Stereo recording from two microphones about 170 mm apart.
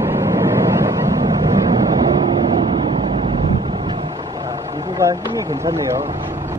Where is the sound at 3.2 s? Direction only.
30° right (ahead or behind).